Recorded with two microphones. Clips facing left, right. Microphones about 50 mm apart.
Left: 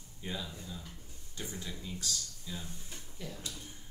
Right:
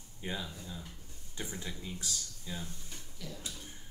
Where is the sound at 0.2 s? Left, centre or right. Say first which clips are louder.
Right 1 dB; centre.